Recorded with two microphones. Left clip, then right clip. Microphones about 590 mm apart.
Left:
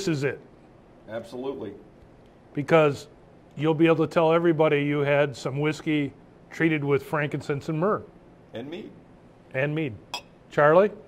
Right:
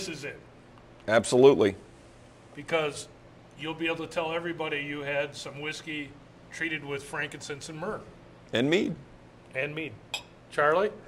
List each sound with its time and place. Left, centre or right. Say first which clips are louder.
0.1 s a man's voice: left 11 dB; left
1.0 s speech: right 14 dB; right
2.5 s a man's voice: left 9 dB; left
8.5 s a man's voice: right 11 dB; right
9.5 s speech: left 5 dB; left